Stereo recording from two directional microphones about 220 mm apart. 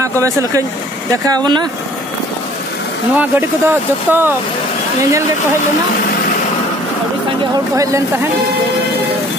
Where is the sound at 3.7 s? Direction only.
10° right (ahead or behind).